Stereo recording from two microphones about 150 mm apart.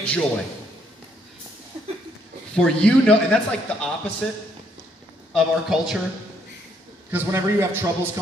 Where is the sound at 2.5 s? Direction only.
5° left (ahead or behind).